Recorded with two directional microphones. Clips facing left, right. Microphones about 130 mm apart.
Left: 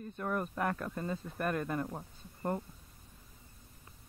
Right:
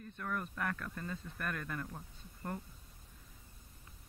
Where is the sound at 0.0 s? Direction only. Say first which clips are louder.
Left 5 dB; 25° left (ahead or behind).